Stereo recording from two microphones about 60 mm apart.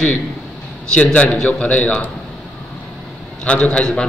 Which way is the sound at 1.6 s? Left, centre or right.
Left.